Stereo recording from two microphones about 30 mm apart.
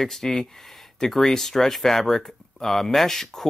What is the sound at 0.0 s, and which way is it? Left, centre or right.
Speech, centre.